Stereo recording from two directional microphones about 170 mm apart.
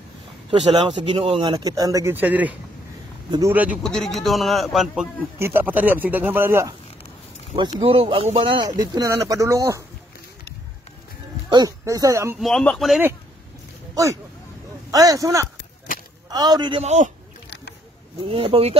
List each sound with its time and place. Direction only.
0.5 s speech: 30° right (ahead or behind); by 2.5 s 10° right (ahead or behind)
3.3 s speech: 20° right (ahead or behind)
3.5 s speech: 10° right (ahead or behind)
3.8 s a man's voice: centre (ahead or behind)
5.4 s speech: 10° right (ahead or behind)
7.8 s speech: 30° right (ahead or behind); by 9.8 s 15° right (ahead or behind)
11.4 s speech: 20° right (ahead or behind)
12.4 s a man's voice: centre (ahead or behind)
14.9 s speech: 20° right (ahead or behind)
16.8 s speech: 40° right (ahead or behind)
18.3 s speech: 35° right (ahead or behind)